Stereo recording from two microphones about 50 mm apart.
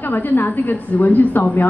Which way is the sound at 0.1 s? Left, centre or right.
Left.